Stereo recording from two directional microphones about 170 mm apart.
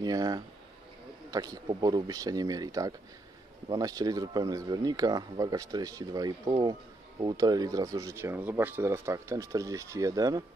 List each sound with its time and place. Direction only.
0.0 s speech: 20° right (ahead or behind)